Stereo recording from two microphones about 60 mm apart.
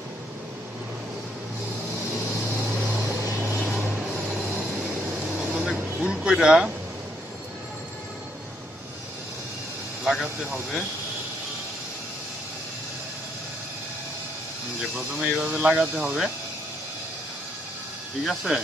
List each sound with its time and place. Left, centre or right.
2.8 s vehicle: right
3.1 s vehicle: right
3.8 s vehicle: centre
6.1 s speech: centre
10.0 s vehicle: centre
15.1 s speech: centre
18.2 s speech: centre